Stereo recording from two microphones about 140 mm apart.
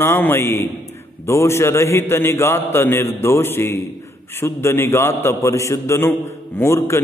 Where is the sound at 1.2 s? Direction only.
20° left (ahead or behind).